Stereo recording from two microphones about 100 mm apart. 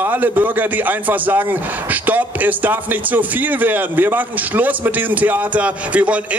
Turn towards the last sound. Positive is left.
turn(degrees=-10)  # may be behind; listen again after turning